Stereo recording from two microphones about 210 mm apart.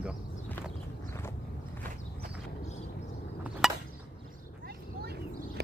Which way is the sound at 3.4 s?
Centre (ahead or behind).